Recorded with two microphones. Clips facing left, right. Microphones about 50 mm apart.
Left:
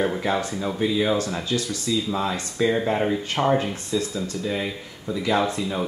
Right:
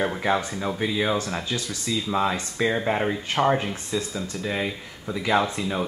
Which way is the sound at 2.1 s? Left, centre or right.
Centre.